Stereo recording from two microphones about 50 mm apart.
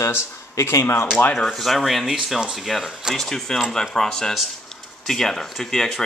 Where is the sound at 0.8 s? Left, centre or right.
Left.